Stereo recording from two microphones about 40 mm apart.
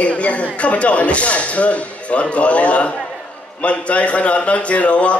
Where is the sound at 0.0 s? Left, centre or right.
Left.